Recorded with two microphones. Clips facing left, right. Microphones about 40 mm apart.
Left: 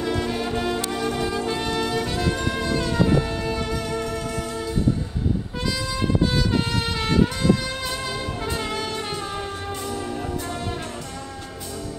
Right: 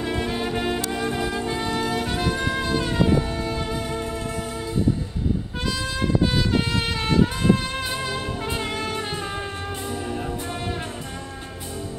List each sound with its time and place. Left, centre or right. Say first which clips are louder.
0.0 s music: left 1 dB; right
3.2 s music: left 1 dB; left
3.6 s music: left 1 dB; right
6.3 s music: even; right